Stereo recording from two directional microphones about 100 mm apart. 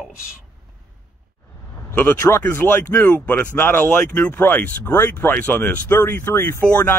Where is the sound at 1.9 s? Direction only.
25° left (ahead or behind).